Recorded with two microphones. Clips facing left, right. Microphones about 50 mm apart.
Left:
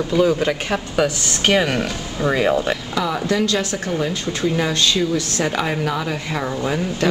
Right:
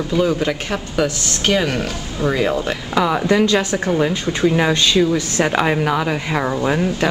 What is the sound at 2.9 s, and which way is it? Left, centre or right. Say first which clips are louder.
A woman's voice: right 6 dB; right.